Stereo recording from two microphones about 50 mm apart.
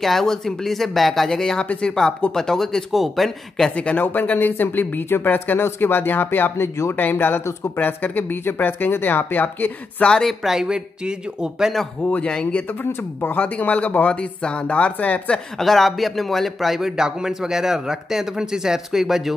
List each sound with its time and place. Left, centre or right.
0.0 s speech: centre
3.7 s speech: left
4.0 s speech: left
6.6 s speech: left
7.0 s speech: left
10.0 s speech: centre
10.4 s a man's voice: centre
12.0 s speech: left
13.2 s speech: left
15.6 s a man's voice: centre